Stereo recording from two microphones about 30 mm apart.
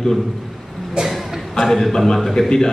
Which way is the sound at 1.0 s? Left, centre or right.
Centre.